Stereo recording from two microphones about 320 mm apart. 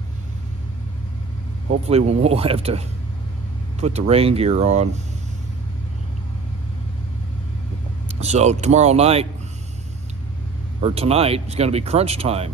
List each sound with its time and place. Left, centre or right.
1.7 s speech: centre
3.8 s speech: centre
8.2 s speech: right
10.8 s speech: centre